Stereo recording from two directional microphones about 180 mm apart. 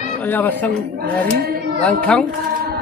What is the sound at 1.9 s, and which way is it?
Speech, 5° left (ahead or behind).